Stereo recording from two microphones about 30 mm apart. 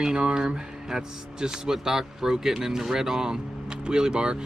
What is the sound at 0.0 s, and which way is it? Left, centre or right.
Speech, right.